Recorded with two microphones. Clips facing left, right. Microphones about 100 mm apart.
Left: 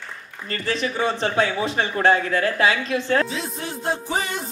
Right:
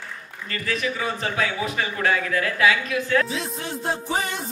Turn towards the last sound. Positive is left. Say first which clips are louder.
# even
turn(degrees=0)  # may be behind; listen again after turning